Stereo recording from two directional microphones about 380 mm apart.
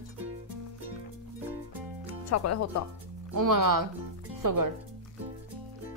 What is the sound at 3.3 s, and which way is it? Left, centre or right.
Speech, right.